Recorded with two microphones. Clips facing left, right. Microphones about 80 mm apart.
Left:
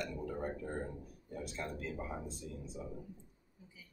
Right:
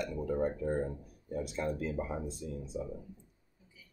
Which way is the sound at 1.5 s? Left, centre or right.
Centre.